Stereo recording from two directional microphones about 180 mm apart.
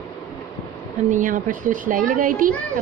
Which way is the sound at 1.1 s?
50° right (ahead or behind).